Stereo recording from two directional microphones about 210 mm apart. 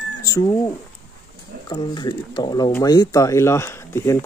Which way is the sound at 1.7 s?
20° left (ahead or behind).